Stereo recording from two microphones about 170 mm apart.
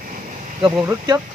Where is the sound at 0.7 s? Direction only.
15° right (ahead or behind).